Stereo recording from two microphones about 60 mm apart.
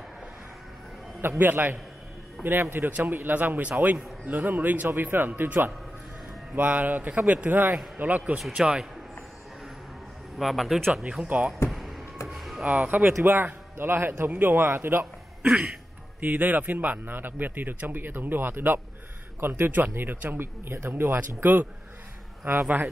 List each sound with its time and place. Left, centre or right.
1.4 s speech: right
8.4 s a man's voice: centre
10.3 s a man's voice: centre
11.2 s speech: right
12.3 s a sound: centre
12.8 s speech: right
15.4 s throat clearing: centre
16.2 s speech: right